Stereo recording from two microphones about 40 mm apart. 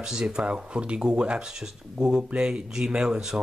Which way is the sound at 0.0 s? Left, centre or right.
Centre.